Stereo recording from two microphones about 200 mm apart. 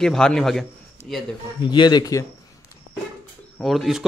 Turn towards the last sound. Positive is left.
turn(degrees=0)  # may be behind; listen again after turning